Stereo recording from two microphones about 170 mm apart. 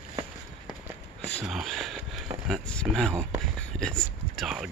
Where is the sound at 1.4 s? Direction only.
Centre (ahead or behind).